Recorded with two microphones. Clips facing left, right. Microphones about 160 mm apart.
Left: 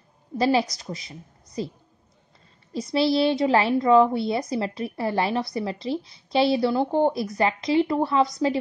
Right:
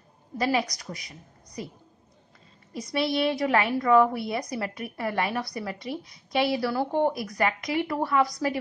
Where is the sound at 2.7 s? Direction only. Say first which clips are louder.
Left 5 dB; 30° left (ahead or behind).